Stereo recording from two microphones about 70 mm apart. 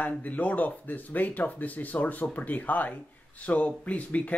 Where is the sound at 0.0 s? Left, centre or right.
Left.